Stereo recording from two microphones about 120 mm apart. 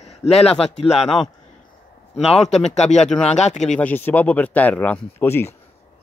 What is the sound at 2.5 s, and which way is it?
Speech, 65° left (ahead or behind).